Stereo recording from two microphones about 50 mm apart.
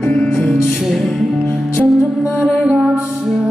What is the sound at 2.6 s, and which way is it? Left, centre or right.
Music, right.